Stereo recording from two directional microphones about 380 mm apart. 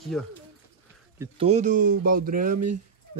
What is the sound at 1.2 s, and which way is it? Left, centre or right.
Speech, centre.